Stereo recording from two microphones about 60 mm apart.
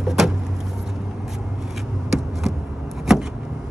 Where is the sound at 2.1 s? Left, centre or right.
Centre.